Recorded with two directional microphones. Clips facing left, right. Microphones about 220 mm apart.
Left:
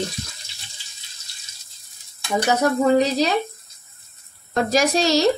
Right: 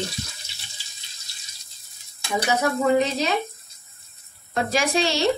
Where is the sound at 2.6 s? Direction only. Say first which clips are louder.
Left 3 dB; 35° left (ahead or behind).